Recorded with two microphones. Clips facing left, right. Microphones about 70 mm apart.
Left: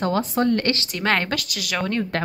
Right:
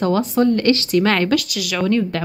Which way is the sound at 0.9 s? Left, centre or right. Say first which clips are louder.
Right 7 dB; left.